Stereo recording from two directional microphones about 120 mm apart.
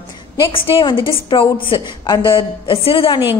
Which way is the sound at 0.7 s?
45° left (ahead or behind).